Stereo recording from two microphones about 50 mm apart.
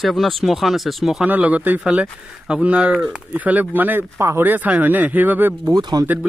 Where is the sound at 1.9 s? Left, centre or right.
Centre.